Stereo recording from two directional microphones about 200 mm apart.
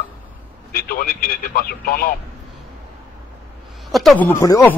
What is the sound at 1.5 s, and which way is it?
Speech, 45° left (ahead or behind).